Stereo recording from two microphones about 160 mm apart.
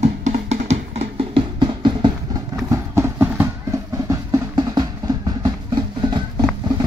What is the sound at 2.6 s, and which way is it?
Music, 15° right (ahead or behind).